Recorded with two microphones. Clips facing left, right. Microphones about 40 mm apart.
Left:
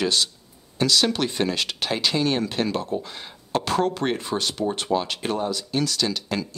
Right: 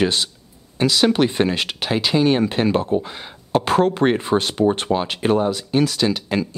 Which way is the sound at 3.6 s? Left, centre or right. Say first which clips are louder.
Right 6 dB; right.